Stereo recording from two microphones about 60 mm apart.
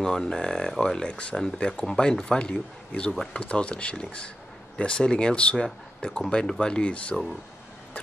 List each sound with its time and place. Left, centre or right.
0.0 s speech: centre